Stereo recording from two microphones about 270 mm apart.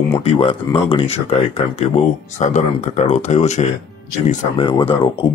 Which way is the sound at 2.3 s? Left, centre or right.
Left.